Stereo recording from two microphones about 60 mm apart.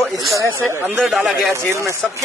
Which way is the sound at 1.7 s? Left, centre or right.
Right.